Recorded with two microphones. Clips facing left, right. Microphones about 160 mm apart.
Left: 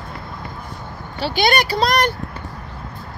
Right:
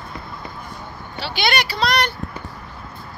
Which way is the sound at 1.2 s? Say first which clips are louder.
Left 4 dB; 45° left (ahead or behind).